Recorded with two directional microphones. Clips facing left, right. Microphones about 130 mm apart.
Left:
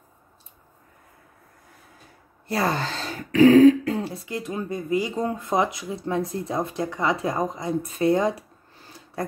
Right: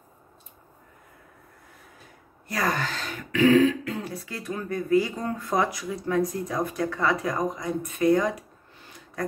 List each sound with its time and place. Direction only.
2.4 s speech: 30° left (ahead or behind)